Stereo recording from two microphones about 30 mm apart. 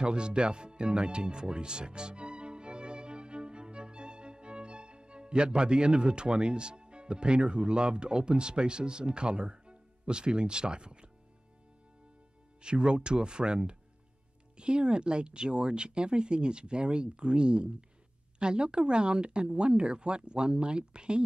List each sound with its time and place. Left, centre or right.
0.0 s speech: right
12.6 s speech: right